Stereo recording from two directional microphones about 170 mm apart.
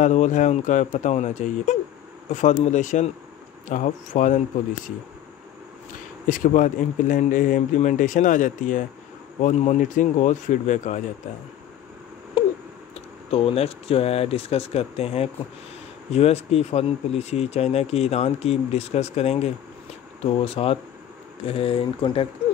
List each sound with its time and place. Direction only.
0.0 s speech: 45° left (ahead or behind)
6.2 s speech: 50° left (ahead or behind)
12.9 s speech: 35° left (ahead or behind)